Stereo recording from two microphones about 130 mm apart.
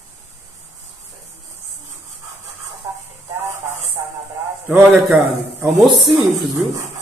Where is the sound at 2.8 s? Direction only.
20° right (ahead or behind).